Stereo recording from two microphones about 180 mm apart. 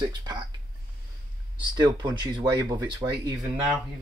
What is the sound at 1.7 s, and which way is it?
Speech, 25° right (ahead or behind).